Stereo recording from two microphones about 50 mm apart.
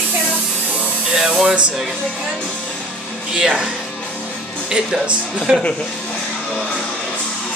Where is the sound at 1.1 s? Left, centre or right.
Centre.